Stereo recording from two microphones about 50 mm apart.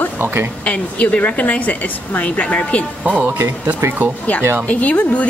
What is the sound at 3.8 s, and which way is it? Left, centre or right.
Speech, right.